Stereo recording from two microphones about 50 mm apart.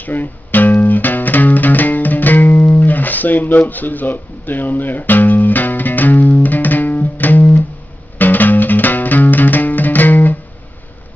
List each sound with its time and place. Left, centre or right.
0.0 s music: left